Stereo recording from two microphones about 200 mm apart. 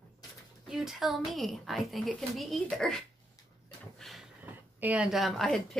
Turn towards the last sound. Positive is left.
turn(degrees=0)  # may be behind; listen again after turning